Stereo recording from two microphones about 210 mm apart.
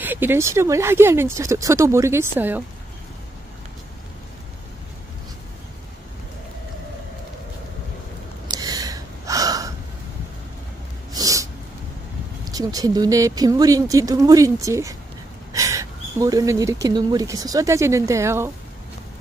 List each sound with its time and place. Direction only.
0.0 s speech: 10° right (ahead or behind)
8.5 s gasp: 15° right (ahead or behind)
11.1 s snort: 15° right (ahead or behind)
12.4 s speech: 15° right (ahead or behind)